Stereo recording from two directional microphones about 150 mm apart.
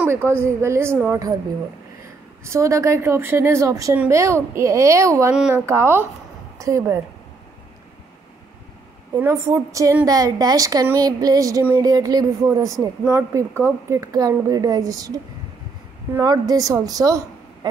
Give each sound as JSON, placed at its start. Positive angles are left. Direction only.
{"t": 0.0, "sound": "a woman's voice", "side_deg": -15}
{"t": 2.4, "sound": "a woman's voice", "side_deg": -20}
{"t": 9.1, "sound": "speech", "side_deg": -20}
{"t": 16.2, "sound": "speech", "side_deg": -25}